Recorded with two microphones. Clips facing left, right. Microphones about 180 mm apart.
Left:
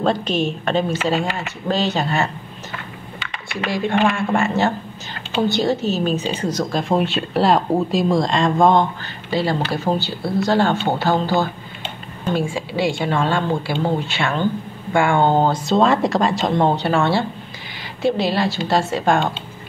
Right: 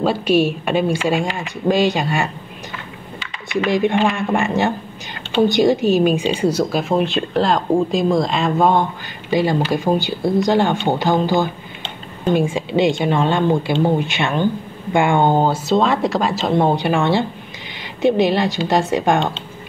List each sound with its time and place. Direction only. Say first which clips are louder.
0.0 s speech: right 4 dB; 10° right (ahead or behind)
3.6 s speech: right 2 dB; 20° right (ahead or behind)